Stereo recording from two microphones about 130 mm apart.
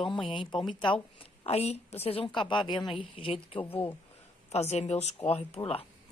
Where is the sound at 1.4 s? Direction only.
55° left (ahead or behind).